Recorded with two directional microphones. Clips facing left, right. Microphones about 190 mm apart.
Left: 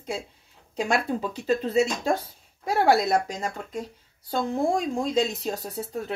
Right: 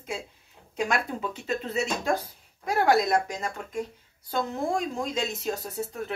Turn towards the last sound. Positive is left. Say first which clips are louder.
# left 1 dB
turn(degrees=35)  # may be behind; listen again after turning